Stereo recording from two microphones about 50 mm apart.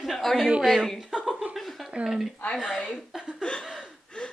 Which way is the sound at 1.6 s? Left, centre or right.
Centre.